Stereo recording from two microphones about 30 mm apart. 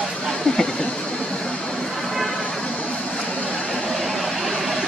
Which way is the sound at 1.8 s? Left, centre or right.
Centre.